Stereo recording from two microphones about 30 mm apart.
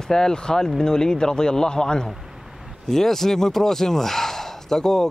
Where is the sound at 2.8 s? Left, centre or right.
Centre.